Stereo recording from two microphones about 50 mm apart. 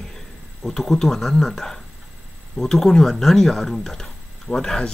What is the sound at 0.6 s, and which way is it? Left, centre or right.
Speech, centre.